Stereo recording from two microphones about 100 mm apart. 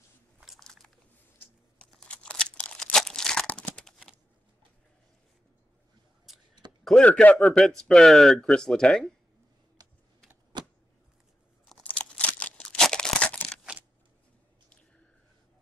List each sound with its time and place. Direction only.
0.4 s biting: 5° right (ahead or behind)
1.9 s crunch: 10° left (ahead or behind)
6.8 s a sound: 5° left (ahead or behind)
7.1 s speech: 15° left (ahead or behind)
7.6 s speech: 5° left (ahead or behind)
10.5 s a sound: 50° right (ahead or behind)
12.0 s tearing: 15° left (ahead or behind)